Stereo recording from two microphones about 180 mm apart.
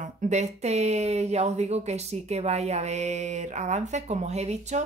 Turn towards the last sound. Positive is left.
turn(degrees=-40)  # may be behind; listen again after turning